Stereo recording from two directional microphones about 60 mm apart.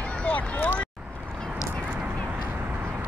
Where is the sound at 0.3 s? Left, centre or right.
Left.